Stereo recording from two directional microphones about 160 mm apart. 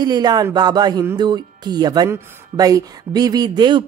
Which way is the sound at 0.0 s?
25° right (ahead or behind).